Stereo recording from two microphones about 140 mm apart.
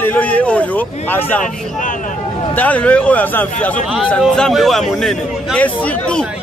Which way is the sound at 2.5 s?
10° left (ahead or behind).